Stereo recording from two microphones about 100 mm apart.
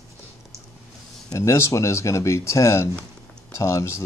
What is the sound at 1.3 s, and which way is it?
Speech, 30° left (ahead or behind).